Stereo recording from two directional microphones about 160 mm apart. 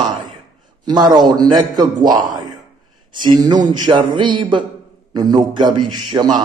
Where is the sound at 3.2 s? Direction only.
30° right (ahead or behind).